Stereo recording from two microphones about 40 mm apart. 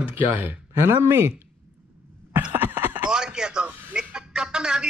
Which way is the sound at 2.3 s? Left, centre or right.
Right.